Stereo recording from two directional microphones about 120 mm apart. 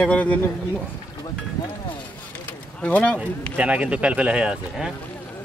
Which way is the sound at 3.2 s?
10° right (ahead or behind).